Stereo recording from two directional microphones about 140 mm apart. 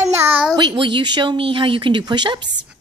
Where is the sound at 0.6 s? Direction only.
35° right (ahead or behind).